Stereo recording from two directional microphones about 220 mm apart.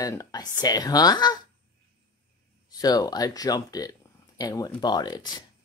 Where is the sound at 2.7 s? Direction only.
15° left (ahead or behind).